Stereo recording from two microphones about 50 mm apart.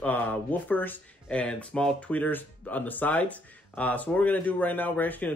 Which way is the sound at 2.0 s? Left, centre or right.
Left.